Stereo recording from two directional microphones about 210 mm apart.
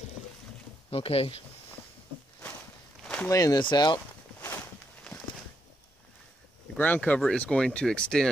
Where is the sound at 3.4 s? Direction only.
20° left (ahead or behind).